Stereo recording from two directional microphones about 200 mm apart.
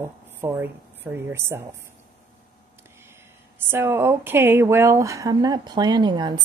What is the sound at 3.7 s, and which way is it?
Speech, 10° right (ahead or behind).